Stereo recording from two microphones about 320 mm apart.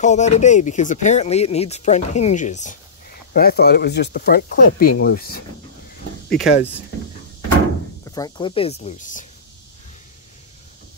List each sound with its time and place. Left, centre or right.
0.0 s speech: left
6.2 s speech: centre
8.1 s speech: centre